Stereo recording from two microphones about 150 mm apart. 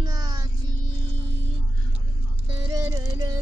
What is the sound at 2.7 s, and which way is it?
Music, 20° right (ahead or behind).